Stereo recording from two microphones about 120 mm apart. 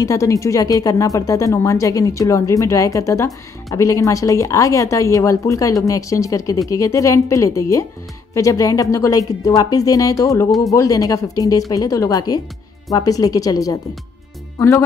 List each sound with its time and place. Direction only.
0.0 s a woman's voice: 25° left (ahead or behind)